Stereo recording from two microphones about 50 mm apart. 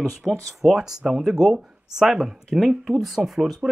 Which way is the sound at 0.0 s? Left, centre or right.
Centre.